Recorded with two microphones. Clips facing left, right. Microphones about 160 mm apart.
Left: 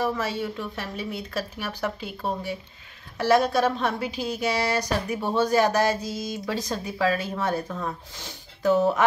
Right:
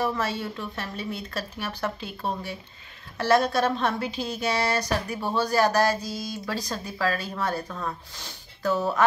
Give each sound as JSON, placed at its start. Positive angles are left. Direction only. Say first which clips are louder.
{"t": 0.0, "sound": "a woman's voice", "louder": "left 1 dB", "side_deg": 10}